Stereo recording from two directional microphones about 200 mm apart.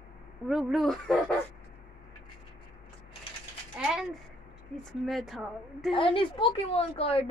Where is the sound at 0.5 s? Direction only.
Centre (ahead or behind).